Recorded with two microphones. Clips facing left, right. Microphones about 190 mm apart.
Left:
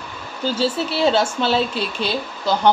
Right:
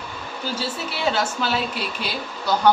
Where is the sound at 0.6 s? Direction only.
30° left (ahead or behind).